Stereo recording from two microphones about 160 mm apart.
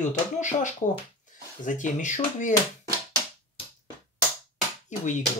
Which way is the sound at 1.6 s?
50° left (ahead or behind).